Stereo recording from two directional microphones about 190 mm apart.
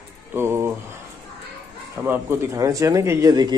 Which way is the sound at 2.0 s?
15° right (ahead or behind).